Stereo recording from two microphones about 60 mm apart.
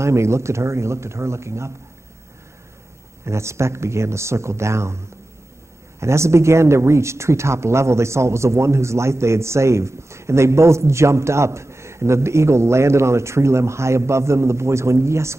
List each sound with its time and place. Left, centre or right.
0.0 s a man's voice: right
3.3 s a man's voice: right
5.9 s a man's voice: right